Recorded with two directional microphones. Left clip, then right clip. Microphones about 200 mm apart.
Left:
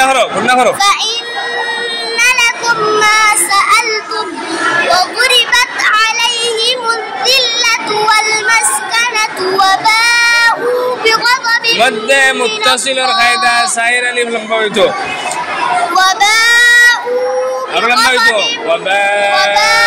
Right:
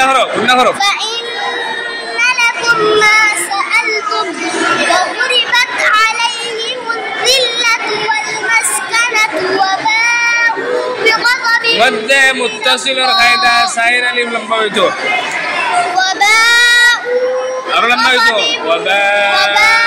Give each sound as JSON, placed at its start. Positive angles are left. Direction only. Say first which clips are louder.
{"t": 0.0, "sound": "a sound", "louder": "even", "side_deg": 15}
{"t": 2.1, "sound": "children playing", "louder": "left 2 dB", "side_deg": 20}
{"t": 2.4, "sound": "child singing", "louder": "right 1 dB", "side_deg": 0}
{"t": 3.3, "sound": "child singing", "louder": "left 5 dB", "side_deg": 20}
{"t": 5.2, "sound": "children playing", "louder": "left 3 dB", "side_deg": 20}
{"t": 5.8, "sound": "children playing", "louder": "even", "side_deg": -5}
{"t": 8.1, "sound": "child singing", "louder": "left 4 dB", "side_deg": 20}
{"t": 8.9, "sound": "a sound", "louder": "right 2 dB", "side_deg": -5}
{"t": 9.6, "sound": "child singing", "louder": "left 4 dB", "side_deg": 25}
{"t": 11.2, "sound": "a sound", "louder": "even", "side_deg": 0}
{"t": 11.8, "sound": "speech", "louder": "even", "side_deg": 15}
{"t": 15.9, "sound": "child singing", "louder": "left 2 dB", "side_deg": 10}
{"t": 17.7, "sound": "speech", "louder": "even", "side_deg": 15}
{"t": 19.5, "sound": "speech", "louder": "right 1 dB", "side_deg": 0}